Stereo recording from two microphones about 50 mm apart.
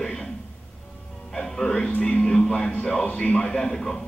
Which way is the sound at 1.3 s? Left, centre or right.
Centre.